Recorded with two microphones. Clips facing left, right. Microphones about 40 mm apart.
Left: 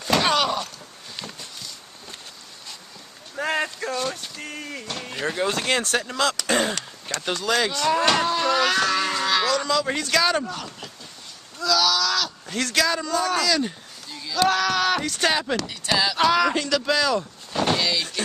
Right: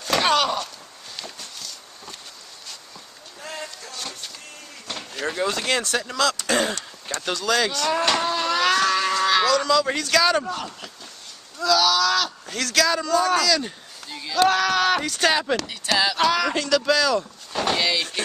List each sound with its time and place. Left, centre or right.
0.2 s a sound: centre
3.3 s a sound: left
5.1 s speech: centre
5.8 s speech: left
6.1 s speech: centre
7.3 s speech: centre
8.3 s livestock: centre
10.4 s speech: centre
12.5 s speech: centre
14.0 s a sound: right
14.3 s speech: centre
17.7 s speech: centre